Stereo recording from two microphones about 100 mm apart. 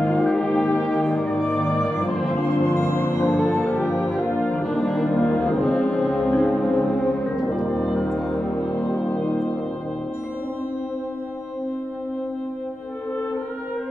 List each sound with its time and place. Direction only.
0.0 s music: 5° left (ahead or behind)
2.7 s music: 25° left (ahead or behind)
3.1 s music: centre (ahead or behind)